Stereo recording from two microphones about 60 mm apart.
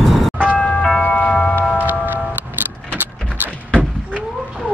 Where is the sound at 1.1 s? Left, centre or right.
Left.